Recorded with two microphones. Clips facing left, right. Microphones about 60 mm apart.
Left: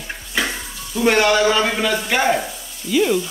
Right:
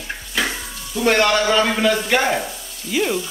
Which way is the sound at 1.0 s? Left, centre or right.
Centre.